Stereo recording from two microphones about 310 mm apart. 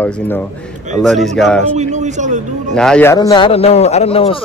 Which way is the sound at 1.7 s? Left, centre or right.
Right.